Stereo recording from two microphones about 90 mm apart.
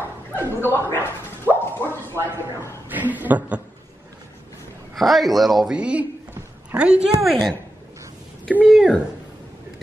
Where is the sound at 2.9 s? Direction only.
20° right (ahead or behind).